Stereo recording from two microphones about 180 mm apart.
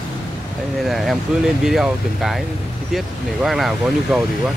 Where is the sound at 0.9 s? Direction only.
Centre (ahead or behind).